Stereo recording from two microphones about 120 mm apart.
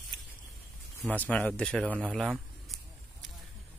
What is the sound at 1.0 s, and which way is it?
Speech, 10° left (ahead or behind).